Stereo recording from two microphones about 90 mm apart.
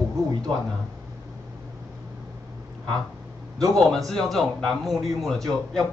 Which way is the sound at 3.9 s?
5° left (ahead or behind).